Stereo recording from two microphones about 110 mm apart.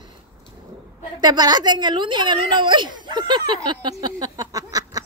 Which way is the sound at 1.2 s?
40° right (ahead or behind).